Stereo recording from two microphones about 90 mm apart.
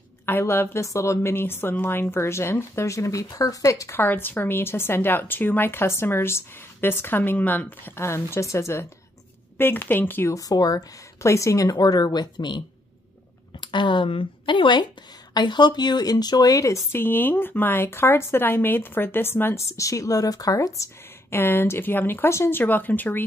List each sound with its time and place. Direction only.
0.2 s speech: 25° left (ahead or behind)
4.0 s speech: 20° left (ahead or behind)
10.3 s a woman's voice: 45° left (ahead or behind)
11.7 s speech: 50° left (ahead or behind); by 23.2 s 20° left (ahead or behind)